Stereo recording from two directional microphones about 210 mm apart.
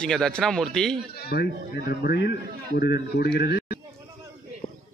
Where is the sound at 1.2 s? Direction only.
50° left (ahead or behind).